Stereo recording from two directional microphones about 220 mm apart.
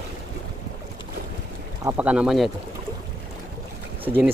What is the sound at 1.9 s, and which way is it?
Speech, 5° right (ahead or behind).